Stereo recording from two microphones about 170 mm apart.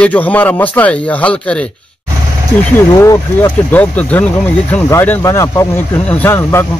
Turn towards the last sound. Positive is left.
turn(degrees=10)  # may be behind; listen again after turning